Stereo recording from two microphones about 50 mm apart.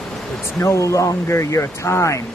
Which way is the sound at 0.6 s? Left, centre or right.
Left.